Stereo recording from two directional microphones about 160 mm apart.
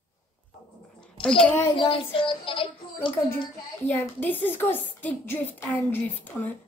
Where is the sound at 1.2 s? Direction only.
5° left (ahead or behind).